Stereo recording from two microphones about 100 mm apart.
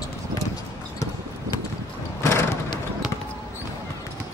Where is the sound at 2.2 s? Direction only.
30° left (ahead or behind).